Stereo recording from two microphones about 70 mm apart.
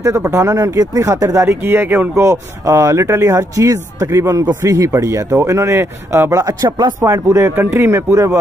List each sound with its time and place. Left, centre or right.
0.0 s speech: right
1.6 s speech: right
2.1 s speech: right